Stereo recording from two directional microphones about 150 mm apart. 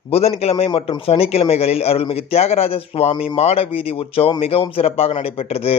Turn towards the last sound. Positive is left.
turn(degrees=40)  # may be behind; listen again after turning